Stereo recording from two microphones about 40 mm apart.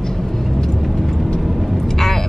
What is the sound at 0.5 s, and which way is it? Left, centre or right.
Vehicle, centre.